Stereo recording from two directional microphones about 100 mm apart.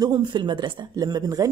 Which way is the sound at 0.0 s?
45° right (ahead or behind).